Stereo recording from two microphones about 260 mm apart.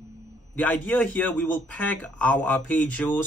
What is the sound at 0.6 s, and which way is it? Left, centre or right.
A man's voice, centre.